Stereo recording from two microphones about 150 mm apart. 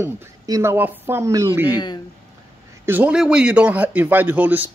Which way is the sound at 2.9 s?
10° right (ahead or behind).